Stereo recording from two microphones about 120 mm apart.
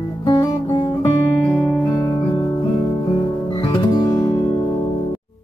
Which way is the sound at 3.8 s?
35° left (ahead or behind).